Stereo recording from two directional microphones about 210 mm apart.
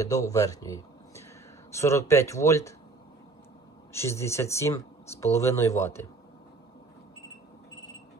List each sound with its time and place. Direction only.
0.0 s speech: 15° left (ahead or behind)
3.9 s speech: 15° left (ahead or behind)